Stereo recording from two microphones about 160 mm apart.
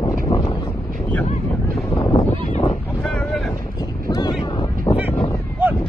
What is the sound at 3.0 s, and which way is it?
Boat, centre (ahead or behind).